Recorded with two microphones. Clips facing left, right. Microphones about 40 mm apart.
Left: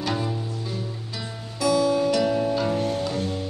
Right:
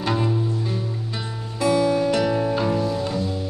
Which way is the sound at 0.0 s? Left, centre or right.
Right.